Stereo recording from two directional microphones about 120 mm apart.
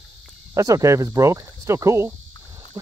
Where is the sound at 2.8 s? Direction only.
30° right (ahead or behind).